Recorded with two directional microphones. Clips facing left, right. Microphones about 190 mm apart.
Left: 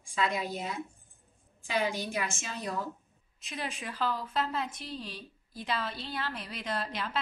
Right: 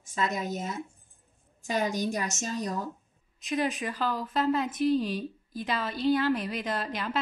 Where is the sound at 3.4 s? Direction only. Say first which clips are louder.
Right 10 dB; centre (ahead or behind).